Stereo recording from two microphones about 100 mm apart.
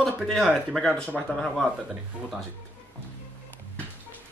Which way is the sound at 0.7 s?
5° left (ahead or behind).